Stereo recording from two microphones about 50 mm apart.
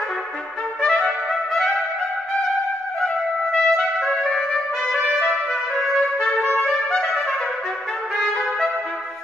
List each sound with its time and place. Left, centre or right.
0.8 s trumpet: centre
3.5 s music: centre
4.2 s trumpet: centre
6.5 s trumpet: centre